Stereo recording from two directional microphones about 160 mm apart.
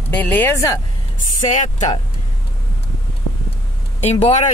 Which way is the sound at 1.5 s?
50° left (ahead or behind).